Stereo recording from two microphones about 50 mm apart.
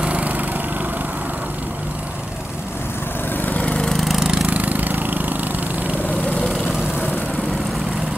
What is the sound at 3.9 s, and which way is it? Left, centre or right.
Vehicle, centre.